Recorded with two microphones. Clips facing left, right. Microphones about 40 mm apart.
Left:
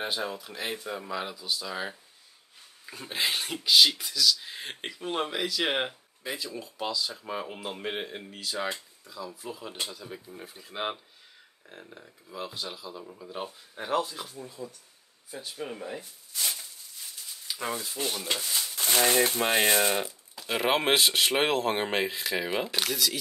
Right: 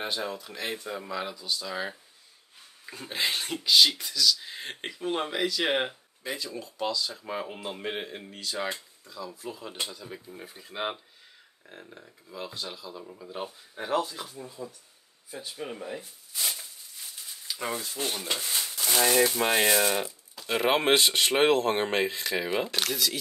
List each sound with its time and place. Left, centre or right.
0.0 s speech: centre
18.4 s a sound: right
19.3 s speech: centre